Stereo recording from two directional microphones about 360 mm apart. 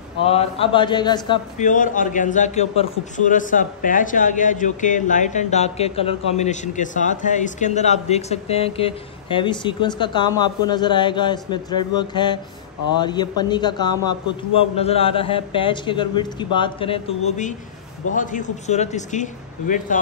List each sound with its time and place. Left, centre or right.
0.2 s a man's voice: centre